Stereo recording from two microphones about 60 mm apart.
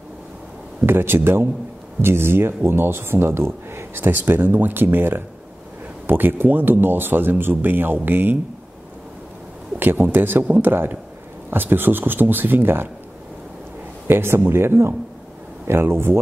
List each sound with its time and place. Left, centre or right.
0.8 s speech: right
9.8 s speech: right
14.0 s speech: right